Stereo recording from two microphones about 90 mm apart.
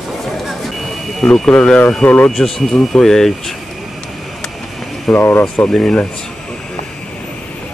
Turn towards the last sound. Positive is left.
turn(degrees=10)  # may be behind; listen again after turning